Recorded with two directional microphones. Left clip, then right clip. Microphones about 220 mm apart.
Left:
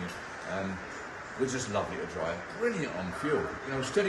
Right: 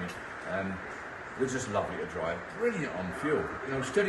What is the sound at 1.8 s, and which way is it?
Speech, 10° left (ahead or behind).